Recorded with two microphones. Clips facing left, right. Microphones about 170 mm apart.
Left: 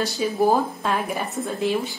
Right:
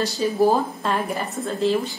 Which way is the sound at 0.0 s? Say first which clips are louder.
Right 2 dB; centre (ahead or behind).